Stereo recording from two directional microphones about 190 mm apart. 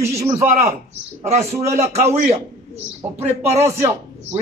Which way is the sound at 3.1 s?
35° right (ahead or behind).